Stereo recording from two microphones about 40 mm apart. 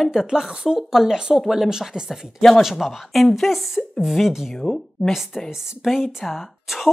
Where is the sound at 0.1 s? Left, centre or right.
Centre.